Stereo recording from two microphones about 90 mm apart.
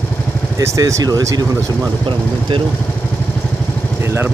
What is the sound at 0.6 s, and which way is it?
Speech, 35° right (ahead or behind).